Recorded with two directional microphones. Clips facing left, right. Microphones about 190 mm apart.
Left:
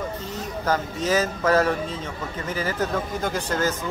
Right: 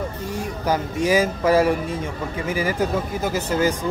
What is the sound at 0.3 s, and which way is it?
Speech, 10° right (ahead or behind).